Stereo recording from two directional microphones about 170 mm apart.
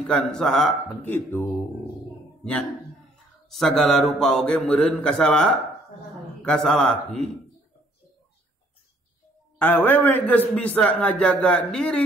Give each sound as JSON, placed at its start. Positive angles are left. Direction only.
{"t": 0.0, "sound": "speech", "side_deg": 5}
{"t": 3.4, "sound": "speech", "side_deg": 0}
{"t": 9.6, "sound": "a man's voice", "side_deg": 10}